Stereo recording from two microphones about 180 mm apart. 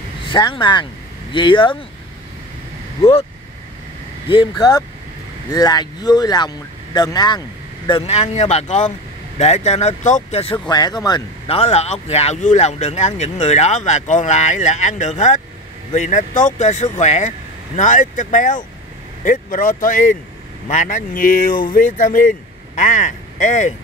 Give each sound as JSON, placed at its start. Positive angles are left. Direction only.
{"t": 0.2, "sound": "speech", "side_deg": 25}
{"t": 3.0, "sound": "speech", "side_deg": 35}
{"t": 4.3, "sound": "speech", "side_deg": 25}
{"t": 7.9, "sound": "speech", "side_deg": 35}
{"t": 10.7, "sound": "speech", "side_deg": 20}